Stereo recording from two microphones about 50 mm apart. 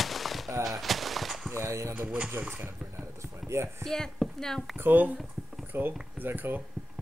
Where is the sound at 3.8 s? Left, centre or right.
Centre.